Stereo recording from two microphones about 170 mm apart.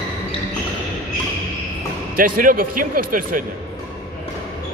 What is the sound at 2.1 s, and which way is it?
Speech, 55° right (ahead or behind).